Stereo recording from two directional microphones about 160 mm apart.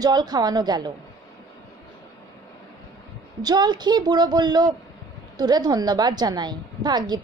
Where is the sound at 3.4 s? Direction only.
25° right (ahead or behind).